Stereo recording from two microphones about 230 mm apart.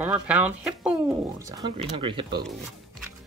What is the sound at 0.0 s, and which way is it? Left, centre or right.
Speech, centre.